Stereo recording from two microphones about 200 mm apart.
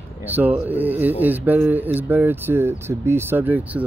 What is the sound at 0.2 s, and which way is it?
Speech, 10° right (ahead or behind).